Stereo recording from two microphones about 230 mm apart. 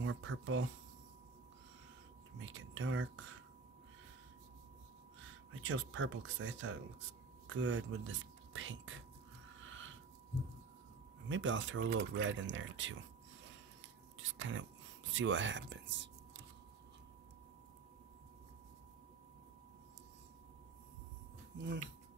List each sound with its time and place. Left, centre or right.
0.0 s speech: right
2.3 s speech: right
5.5 s speech: right
9.6 s a sound: right
11.2 s speech: right
14.1 s speech: right